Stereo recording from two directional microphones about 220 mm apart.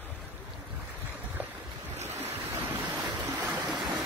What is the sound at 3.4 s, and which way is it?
Stream, 5° right (ahead or behind).